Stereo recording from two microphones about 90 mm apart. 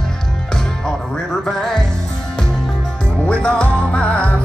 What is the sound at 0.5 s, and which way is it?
Music, 5° left (ahead or behind).